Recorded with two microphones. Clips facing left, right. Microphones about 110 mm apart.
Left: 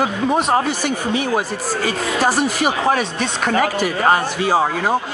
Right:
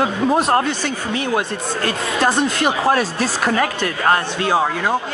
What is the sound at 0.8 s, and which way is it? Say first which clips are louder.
Speech: left 2 dB; 10° left (ahead or behind).